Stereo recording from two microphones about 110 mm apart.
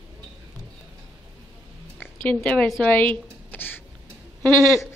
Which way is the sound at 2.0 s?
15° left (ahead or behind).